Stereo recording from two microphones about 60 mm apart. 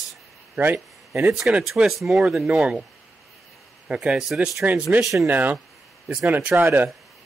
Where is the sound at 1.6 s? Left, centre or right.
Centre.